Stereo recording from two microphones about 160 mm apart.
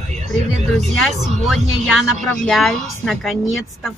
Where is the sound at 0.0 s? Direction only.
45° right (ahead or behind).